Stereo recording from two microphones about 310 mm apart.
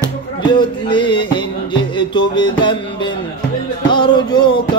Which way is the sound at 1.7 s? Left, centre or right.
Centre.